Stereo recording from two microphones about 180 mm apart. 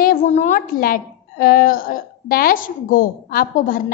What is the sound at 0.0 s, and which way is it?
A woman's voice, 45° left (ahead or behind).